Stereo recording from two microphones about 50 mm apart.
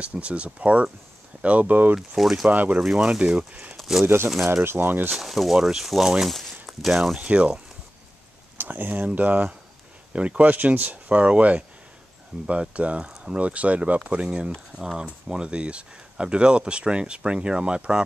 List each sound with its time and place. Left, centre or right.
0.0 s speech: right
2.0 s speech: centre
2.5 s speech: right
2.8 s speech: centre
4.0 s speech: right
5.1 s speech: centre
7.2 s speech: right
8.5 s speech: right; by 18.0 s centre